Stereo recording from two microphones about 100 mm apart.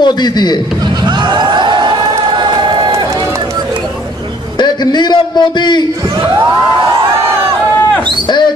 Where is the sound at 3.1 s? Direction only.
35° right (ahead or behind).